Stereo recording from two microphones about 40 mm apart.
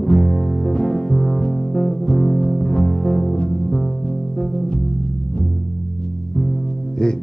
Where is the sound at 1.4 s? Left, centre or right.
Left.